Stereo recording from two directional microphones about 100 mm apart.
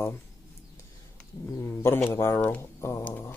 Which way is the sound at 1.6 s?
25° left (ahead or behind).